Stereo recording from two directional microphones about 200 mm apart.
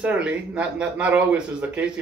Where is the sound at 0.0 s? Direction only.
5° right (ahead or behind).